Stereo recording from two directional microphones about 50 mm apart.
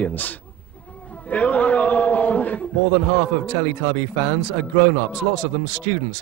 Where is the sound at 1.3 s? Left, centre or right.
Left.